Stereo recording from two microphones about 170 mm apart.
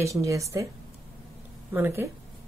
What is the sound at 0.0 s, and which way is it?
Speech, 20° right (ahead or behind).